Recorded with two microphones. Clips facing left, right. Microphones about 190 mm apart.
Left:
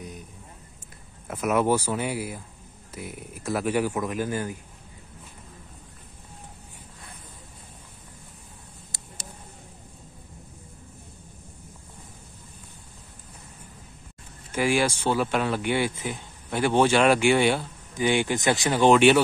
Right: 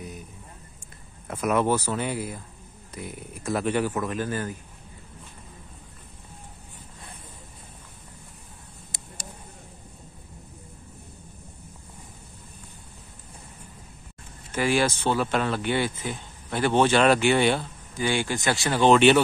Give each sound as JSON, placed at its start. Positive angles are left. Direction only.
{"t": 1.2, "sound": "speech", "side_deg": 5}
{"t": 14.5, "sound": "speech", "side_deg": 15}